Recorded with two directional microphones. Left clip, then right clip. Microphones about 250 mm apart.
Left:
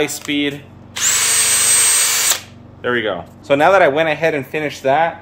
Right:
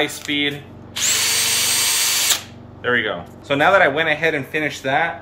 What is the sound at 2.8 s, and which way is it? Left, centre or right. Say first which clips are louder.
A man's voice: left 1 dB; left.